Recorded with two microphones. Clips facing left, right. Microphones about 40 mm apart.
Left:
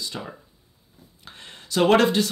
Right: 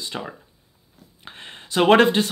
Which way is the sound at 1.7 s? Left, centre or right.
Right.